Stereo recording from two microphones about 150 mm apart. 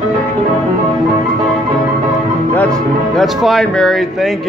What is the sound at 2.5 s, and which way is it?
A man's voice, 10° left (ahead or behind).